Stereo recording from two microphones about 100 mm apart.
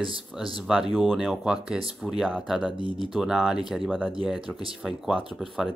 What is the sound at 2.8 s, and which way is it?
Speech, 55° right (ahead or behind).